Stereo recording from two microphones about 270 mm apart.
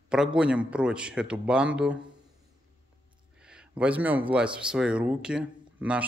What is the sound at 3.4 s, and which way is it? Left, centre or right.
A man's voice, centre.